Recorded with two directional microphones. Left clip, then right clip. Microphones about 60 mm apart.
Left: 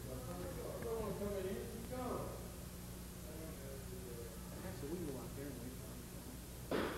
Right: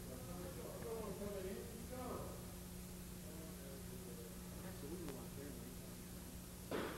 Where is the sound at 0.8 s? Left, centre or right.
Centre.